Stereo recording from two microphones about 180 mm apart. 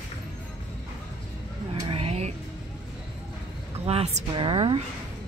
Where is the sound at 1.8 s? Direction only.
30° right (ahead or behind).